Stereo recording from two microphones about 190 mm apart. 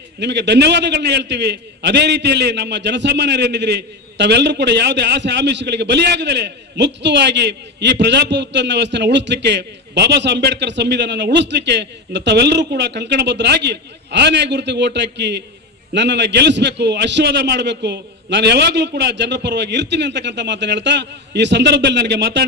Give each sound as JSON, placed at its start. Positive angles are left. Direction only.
{"t": 0.2, "sound": "a man's voice", "side_deg": -65}